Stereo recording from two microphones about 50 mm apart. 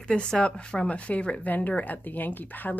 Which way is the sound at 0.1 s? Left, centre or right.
Centre.